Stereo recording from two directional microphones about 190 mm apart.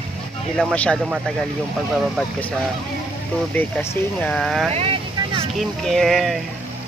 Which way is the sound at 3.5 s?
10° left (ahead or behind).